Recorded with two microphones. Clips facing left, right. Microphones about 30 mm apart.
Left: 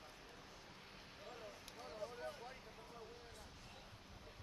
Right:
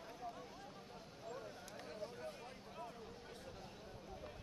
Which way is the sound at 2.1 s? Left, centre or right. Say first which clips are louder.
Even; centre.